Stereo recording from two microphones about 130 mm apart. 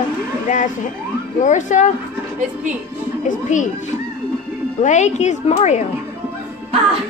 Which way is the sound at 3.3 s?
75° left (ahead or behind).